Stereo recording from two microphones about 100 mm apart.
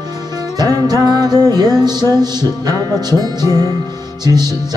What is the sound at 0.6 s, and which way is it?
Music, 40° right (ahead or behind).